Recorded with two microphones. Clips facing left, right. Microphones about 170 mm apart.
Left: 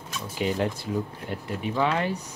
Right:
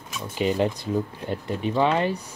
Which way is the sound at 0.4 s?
20° right (ahead or behind).